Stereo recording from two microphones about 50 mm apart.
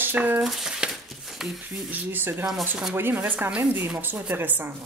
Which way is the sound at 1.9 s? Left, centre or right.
Right.